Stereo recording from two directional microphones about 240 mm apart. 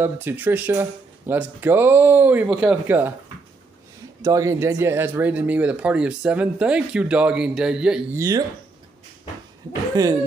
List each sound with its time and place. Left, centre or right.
0.0 s speech: centre
4.2 s speech: centre
10.0 s speech: centre